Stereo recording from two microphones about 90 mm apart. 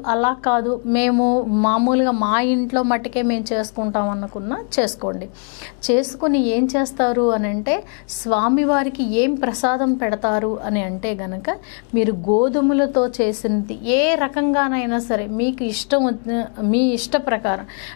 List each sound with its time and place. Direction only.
0.0 s a woman's voice: 15° left (ahead or behind)